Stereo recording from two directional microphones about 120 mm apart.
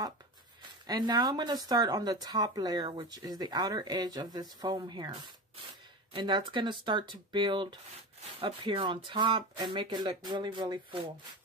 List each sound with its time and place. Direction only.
0.6 s speech: 35° right (ahead or behind)